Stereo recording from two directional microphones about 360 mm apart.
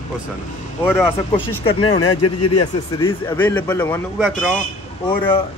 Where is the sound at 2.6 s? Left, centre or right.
Centre.